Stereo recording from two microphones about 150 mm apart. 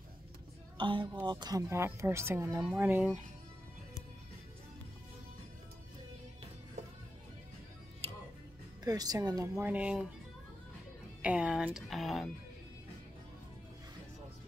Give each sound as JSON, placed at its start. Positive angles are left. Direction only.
{"t": 0.7, "sound": "speech", "side_deg": -35}
{"t": 8.8, "sound": "speech", "side_deg": -25}
{"t": 9.7, "sound": "speech", "side_deg": -10}
{"t": 11.2, "sound": "speech", "side_deg": -5}